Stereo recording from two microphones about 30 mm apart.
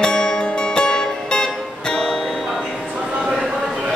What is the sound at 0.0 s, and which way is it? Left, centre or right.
Music, left.